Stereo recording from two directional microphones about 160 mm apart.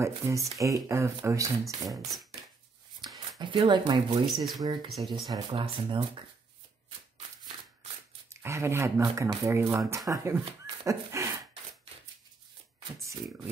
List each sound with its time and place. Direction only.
0.0 s speech: 20° right (ahead or behind)
3.0 s a sound: 25° right (ahead or behind)
3.3 s speech: 30° right (ahead or behind)
4.8 s speech: centre (ahead or behind)
5.3 s speech: 35° right (ahead or behind)
8.3 s speech: 15° right (ahead or behind)